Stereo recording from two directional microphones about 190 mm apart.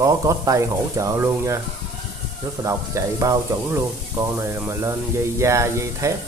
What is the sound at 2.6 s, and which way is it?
Speech, 20° right (ahead or behind).